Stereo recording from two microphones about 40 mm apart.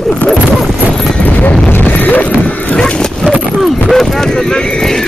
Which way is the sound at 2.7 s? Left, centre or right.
Centre.